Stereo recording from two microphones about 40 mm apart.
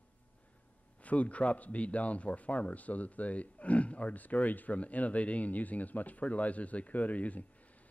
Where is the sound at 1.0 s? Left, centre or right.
Left.